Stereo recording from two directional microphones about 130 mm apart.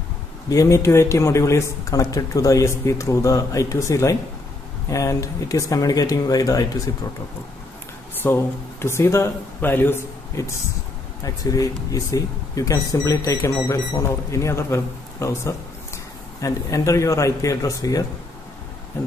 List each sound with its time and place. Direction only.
0.5 s speech: 25° left (ahead or behind)
8.2 s speech: 15° left (ahead or behind)